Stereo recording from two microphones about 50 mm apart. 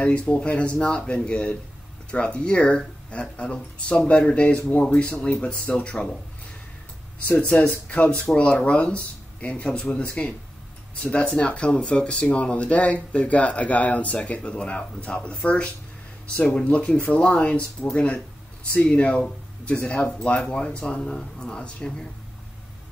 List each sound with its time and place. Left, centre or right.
0.0 s speech: left
7.6 s speech: left